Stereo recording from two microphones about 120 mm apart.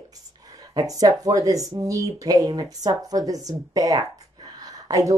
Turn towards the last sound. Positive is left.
turn(degrees=-30)  # may be behind; listen again after turning